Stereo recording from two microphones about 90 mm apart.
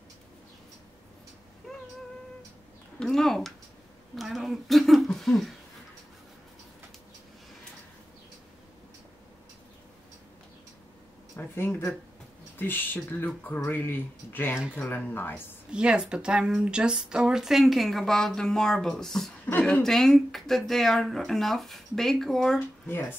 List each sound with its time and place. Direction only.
3.0 s speech: 5° left (ahead or behind)
11.3 s a sound: 25° left (ahead or behind)
12.5 s speech: 20° left (ahead or behind)
15.7 s speech: 10° right (ahead or behind); by 22.6 s 5° left (ahead or behind)
22.8 s speech: 25° left (ahead or behind)